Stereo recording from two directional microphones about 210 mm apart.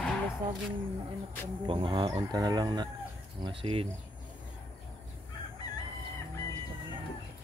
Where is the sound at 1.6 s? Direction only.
25° right (ahead or behind).